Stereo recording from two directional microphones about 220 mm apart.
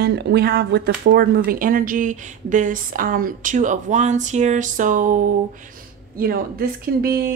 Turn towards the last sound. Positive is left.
turn(degrees=-40)  # may be behind; listen again after turning